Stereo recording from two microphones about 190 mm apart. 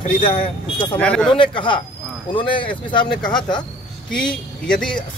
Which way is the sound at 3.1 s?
5° left (ahead or behind).